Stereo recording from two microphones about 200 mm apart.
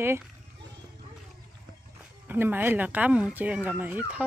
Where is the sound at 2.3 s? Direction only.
10° right (ahead or behind).